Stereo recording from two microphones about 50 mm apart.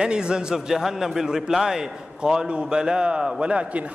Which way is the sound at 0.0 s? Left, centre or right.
Centre.